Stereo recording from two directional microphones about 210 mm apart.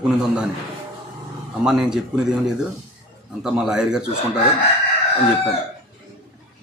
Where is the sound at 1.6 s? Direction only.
5° right (ahead or behind).